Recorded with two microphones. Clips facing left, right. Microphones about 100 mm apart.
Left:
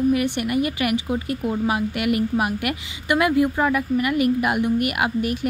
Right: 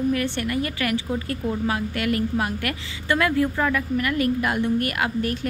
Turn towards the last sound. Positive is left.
turn(degrees=15)  # may be behind; listen again after turning